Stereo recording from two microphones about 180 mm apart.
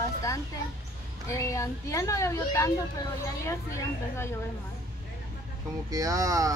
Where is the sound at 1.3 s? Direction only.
15° left (ahead or behind).